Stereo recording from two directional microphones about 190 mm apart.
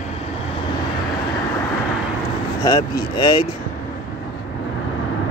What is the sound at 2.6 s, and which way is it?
Speech, 20° left (ahead or behind).